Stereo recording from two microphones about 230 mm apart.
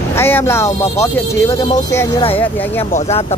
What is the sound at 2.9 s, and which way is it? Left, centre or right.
Speech, left.